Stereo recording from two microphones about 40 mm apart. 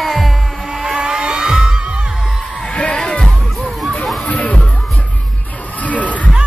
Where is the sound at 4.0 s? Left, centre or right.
Centre.